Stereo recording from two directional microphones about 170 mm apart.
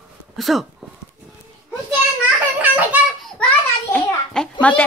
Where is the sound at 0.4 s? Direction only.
Centre (ahead or behind).